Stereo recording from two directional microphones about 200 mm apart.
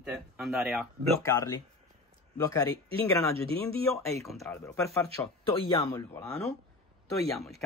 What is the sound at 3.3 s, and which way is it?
Speech, 30° right (ahead or behind).